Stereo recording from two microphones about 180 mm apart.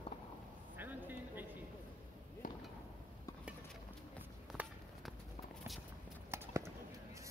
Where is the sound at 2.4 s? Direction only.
50° left (ahead or behind).